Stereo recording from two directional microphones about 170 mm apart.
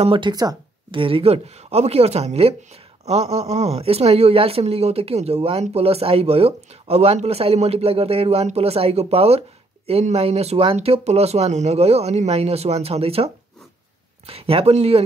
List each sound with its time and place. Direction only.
0.0 s speech: 30° right (ahead or behind)